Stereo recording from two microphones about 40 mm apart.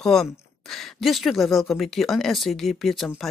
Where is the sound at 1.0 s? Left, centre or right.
Centre.